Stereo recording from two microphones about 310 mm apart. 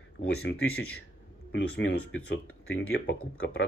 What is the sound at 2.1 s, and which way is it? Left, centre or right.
Speech, left.